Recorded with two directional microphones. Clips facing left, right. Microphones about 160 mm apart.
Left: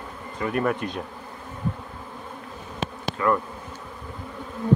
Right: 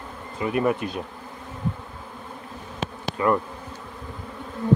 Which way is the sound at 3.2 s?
25° right (ahead or behind).